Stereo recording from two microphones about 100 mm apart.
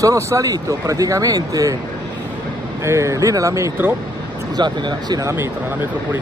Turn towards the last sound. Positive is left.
turn(degrees=-25)  # may be behind; listen again after turning